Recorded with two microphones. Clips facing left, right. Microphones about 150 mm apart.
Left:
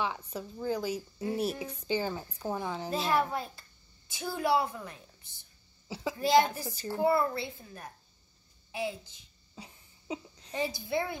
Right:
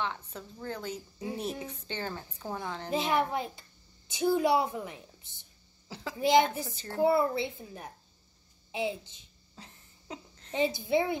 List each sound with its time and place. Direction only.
0.0 s a woman's voice: 10° left (ahead or behind)
2.9 s a child's voice: 20° right (ahead or behind)
9.6 s a sound: 10° left (ahead or behind)
10.5 s a child's voice: 20° right (ahead or behind)